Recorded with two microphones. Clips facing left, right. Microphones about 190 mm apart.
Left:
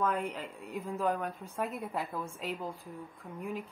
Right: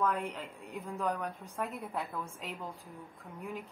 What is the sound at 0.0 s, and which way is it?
A woman's voice, centre (ahead or behind).